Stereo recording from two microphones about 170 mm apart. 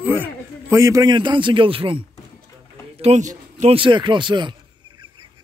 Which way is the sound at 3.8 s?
30° right (ahead or behind).